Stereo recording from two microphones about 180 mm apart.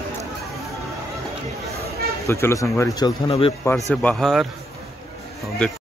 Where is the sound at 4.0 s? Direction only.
5° left (ahead or behind).